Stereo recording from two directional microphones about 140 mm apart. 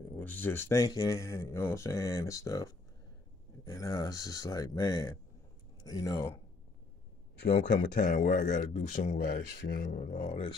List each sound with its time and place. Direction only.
0.2 s speech: 15° left (ahead or behind)
7.5 s speech: 90° left; by 10.4 s 70° left (ahead or behind)